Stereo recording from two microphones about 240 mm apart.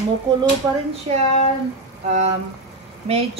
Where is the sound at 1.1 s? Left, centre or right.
Right.